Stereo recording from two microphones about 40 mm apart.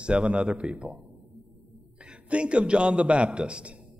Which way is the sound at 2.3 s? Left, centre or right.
Right.